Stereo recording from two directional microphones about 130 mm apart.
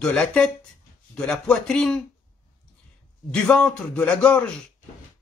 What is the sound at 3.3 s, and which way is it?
A man's voice, 5° left (ahead or behind).